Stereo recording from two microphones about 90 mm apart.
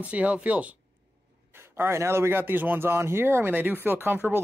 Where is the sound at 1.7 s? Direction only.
30° right (ahead or behind).